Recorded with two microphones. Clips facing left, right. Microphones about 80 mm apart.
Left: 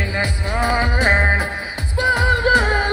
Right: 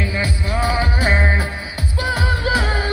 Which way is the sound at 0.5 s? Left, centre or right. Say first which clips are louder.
Left 2 dB; left.